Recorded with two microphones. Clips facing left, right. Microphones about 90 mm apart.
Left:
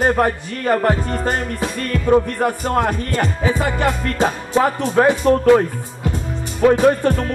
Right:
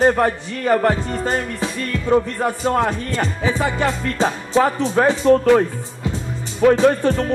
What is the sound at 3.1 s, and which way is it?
Music, 55° left (ahead or behind).